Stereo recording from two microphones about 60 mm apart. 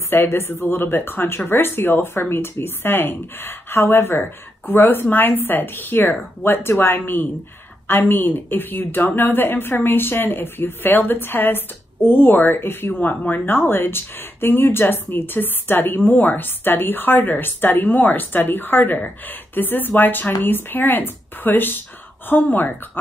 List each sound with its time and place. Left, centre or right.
0.1 s speech: left
13.0 s speech: left